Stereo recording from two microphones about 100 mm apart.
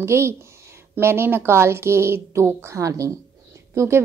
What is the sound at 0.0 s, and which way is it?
A woman's voice, 25° right (ahead or behind).